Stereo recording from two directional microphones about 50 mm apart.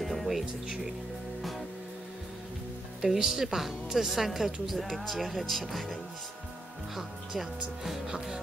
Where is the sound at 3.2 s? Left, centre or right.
Centre.